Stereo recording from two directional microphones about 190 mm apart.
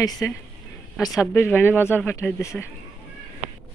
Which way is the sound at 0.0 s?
20° left (ahead or behind).